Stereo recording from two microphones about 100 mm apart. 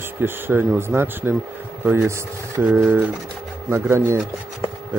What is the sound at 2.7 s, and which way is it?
Speech, 10° right (ahead or behind).